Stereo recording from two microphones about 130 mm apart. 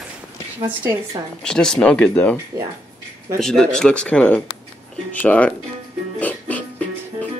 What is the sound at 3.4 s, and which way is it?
Speech, 5° left (ahead or behind).